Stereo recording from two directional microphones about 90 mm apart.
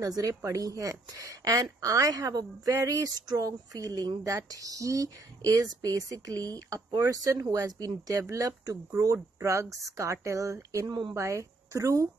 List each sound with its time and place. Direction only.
0.0 s speech: 40° right (ahead or behind)
10.9 s speech: 55° right (ahead or behind)
11.1 s a woman's voice: 35° right (ahead or behind)